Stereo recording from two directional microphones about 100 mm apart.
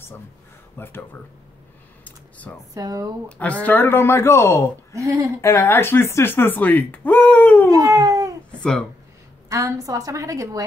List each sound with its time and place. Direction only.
0.7 s speech: 20° left (ahead or behind)
2.0 s computer keyboard: 15° left (ahead or behind)
2.7 s a woman's voice: 35° right (ahead or behind)
3.3 s speech: 10° left (ahead or behind); by 4.6 s 30° left (ahead or behind)
4.9 s a woman's voice: 30° right (ahead or behind)
5.4 s speech: 30° left (ahead or behind)
7.9 s cat: 35° right (ahead or behind)
8.5 s babbling: 5° left (ahead or behind)
9.5 s a woman's voice: 35° right (ahead or behind)